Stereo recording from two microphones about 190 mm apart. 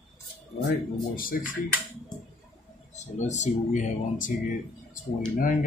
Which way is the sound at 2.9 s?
40° left (ahead or behind).